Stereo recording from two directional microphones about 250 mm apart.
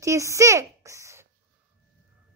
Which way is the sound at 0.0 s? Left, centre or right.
Centre.